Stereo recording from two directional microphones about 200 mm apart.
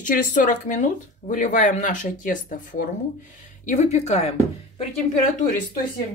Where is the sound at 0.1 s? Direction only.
40° left (ahead or behind).